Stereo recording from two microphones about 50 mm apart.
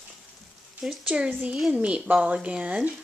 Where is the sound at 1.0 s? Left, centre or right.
Right.